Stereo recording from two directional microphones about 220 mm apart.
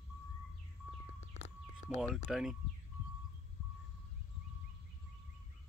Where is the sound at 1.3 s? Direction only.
30° left (ahead or behind).